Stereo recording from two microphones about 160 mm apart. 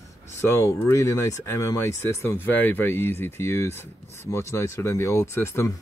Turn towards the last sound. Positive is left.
turn(degrees=15)  # may be behind; listen again after turning